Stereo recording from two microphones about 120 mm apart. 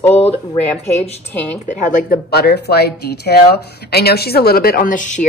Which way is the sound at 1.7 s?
90° left.